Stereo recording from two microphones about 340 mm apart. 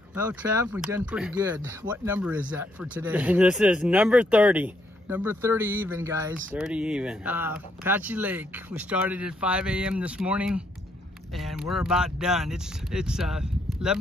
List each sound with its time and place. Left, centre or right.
0.1 s speech: centre